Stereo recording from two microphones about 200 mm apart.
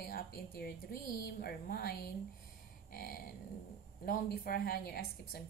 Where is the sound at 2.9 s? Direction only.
50° left (ahead or behind).